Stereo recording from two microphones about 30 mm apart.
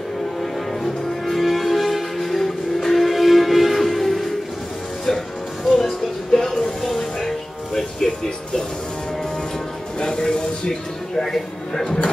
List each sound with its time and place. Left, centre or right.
0.4 s music: centre
7.2 s music: centre
9.9 s a sound: left